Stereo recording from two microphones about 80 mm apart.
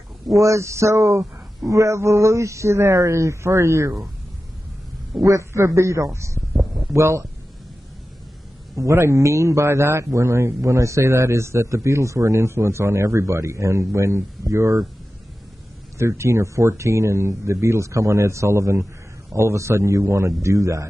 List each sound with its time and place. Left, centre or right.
0.3 s a man's voice: right
5.8 s a man's voice: right
6.5 s a sound: centre
6.9 s a man's voice: right
8.7 s a man's voice: right
16.0 s a man's voice: right